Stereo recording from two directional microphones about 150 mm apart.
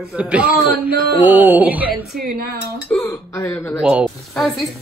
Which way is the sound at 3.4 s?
10° left (ahead or behind).